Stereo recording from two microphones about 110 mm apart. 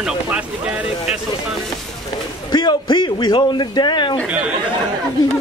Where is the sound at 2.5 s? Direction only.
45° left (ahead or behind).